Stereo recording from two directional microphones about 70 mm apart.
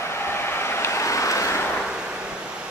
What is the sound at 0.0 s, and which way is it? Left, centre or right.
Vehicle, left.